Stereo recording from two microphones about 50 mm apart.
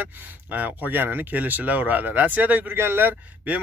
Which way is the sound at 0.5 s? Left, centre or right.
Right.